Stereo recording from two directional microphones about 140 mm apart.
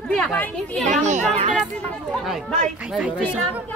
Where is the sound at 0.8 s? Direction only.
60° right (ahead or behind).